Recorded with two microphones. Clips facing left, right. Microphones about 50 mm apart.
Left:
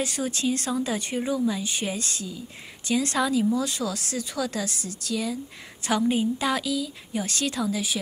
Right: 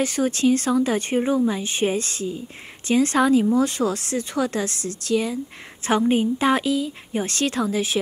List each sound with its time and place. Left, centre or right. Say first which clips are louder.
0.0 s speech: right 7 dB; right
4.6 s speech: right 5 dB; right
5.1 s speech: right 6 dB; right